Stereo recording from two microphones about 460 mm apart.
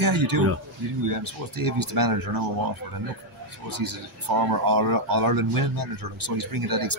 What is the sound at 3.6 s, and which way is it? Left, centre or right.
Speech, right.